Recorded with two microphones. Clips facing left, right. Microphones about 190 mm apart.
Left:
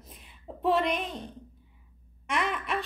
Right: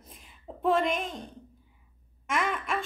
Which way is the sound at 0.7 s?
45° right (ahead or behind).